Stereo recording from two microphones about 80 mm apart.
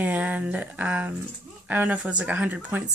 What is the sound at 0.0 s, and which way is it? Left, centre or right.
A woman's voice, centre.